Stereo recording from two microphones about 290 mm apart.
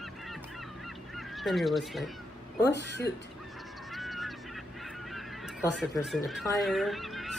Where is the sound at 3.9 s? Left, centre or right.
Centre.